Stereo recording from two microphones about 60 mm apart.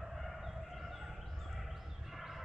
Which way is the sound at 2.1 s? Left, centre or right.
Centre.